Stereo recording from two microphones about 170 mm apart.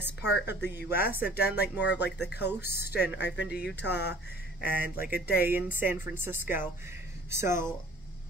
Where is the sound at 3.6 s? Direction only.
5° right (ahead or behind).